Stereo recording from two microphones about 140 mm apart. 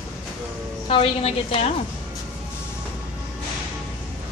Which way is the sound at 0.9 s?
40° left (ahead or behind).